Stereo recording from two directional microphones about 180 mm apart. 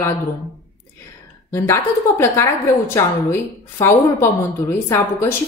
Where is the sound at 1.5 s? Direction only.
15° left (ahead or behind).